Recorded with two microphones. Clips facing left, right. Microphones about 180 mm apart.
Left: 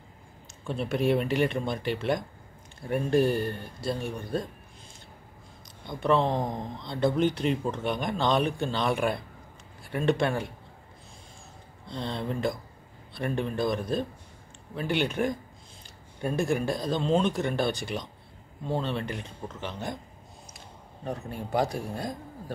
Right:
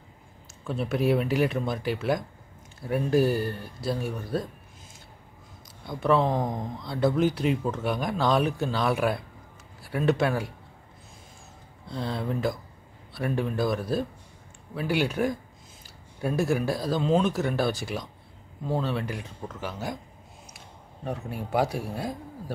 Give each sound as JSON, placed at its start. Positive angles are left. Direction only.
{"t": 0.7, "sound": "speech", "side_deg": -5}
{"t": 5.9, "sound": "speech", "side_deg": -5}
{"t": 11.8, "sound": "speech", "side_deg": -5}
{"t": 21.0, "sound": "speech", "side_deg": -5}